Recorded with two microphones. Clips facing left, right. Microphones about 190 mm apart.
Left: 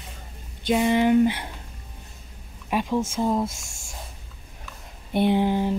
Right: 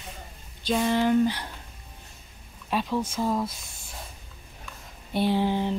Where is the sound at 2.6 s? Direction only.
15° left (ahead or behind).